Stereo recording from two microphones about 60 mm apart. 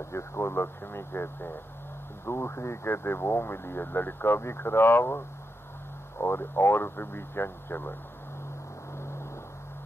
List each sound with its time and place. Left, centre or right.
0.1 s speech: left
8.9 s vehicle: left